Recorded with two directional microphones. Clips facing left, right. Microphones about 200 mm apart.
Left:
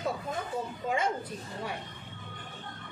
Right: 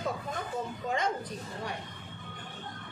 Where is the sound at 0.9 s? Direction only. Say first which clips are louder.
Left 1 dB; 5° left (ahead or behind).